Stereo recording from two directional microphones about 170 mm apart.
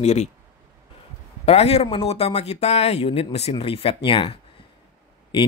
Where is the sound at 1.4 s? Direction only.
35° left (ahead or behind).